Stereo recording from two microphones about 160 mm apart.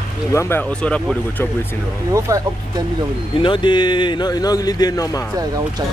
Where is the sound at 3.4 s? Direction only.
30° left (ahead or behind).